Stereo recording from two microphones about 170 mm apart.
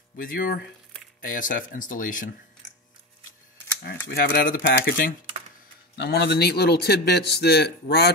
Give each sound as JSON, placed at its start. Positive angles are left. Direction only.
{"t": 0.1, "sound": "speech", "side_deg": 55}
{"t": 4.1, "sound": "speech", "side_deg": 60}
{"t": 5.9, "sound": "a man's voice", "side_deg": 75}